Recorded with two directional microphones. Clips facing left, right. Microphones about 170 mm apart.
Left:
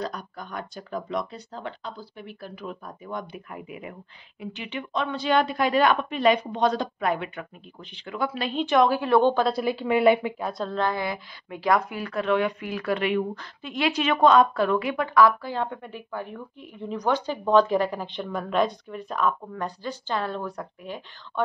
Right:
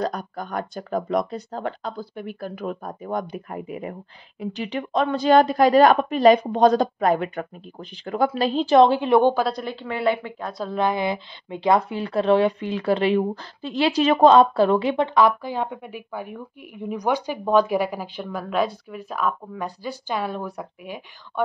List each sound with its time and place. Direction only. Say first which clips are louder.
0.0 s a woman's voice: right 6 dB; 45° right (ahead or behind); by 9.3 s 20° right (ahead or behind)
9.3 s a woman's voice: left 1 dB; centre (ahead or behind)
10.6 s a woman's voice: right 4 dB; 15° right (ahead or behind)